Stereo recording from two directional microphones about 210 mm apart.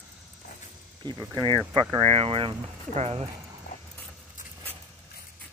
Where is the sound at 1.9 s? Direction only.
30° right (ahead or behind).